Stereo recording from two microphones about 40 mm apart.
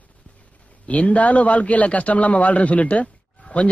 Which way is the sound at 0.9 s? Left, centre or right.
Left.